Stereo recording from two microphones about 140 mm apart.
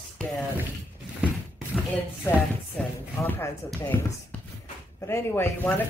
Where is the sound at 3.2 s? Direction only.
15° left (ahead or behind).